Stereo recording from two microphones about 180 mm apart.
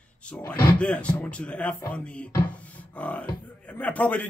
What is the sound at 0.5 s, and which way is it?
A man's voice, 10° left (ahead or behind).